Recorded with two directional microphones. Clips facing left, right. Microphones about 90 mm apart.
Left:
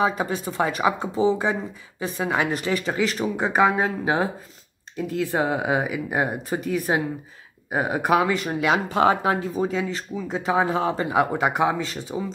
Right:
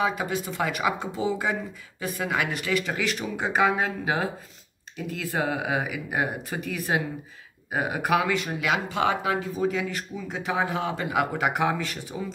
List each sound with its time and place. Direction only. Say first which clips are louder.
0.0 s speech: left 3 dB; 30° left (ahead or behind)